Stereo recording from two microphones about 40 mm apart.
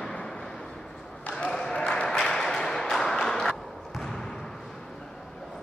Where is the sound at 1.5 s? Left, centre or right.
Centre.